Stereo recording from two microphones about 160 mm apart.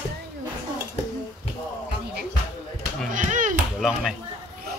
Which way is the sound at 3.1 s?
55° right (ahead or behind).